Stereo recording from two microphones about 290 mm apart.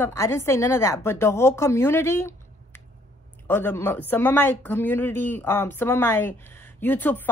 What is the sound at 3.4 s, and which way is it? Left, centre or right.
A woman's voice, centre.